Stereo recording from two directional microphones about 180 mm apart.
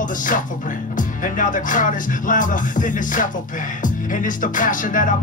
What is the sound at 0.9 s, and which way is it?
Music, 45° left (ahead or behind).